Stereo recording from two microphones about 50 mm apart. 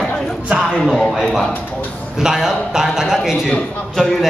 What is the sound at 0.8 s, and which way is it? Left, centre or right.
Speech, centre.